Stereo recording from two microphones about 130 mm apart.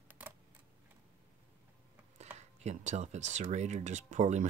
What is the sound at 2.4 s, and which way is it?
Speech, 60° right (ahead or behind).